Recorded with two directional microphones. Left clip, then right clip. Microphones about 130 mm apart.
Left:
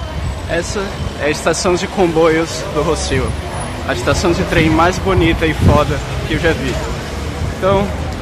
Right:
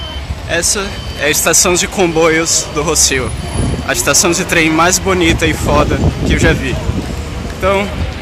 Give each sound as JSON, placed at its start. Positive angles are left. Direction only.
{"t": 0.5, "sound": "speech", "side_deg": -25}
{"t": 7.6, "sound": "speech", "side_deg": -15}